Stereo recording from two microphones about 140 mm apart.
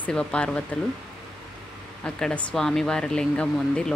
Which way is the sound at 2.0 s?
5° left (ahead or behind).